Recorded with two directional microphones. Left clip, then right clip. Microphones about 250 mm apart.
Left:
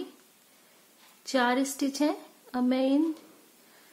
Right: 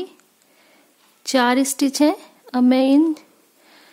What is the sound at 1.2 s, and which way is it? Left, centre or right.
A woman's voice, right.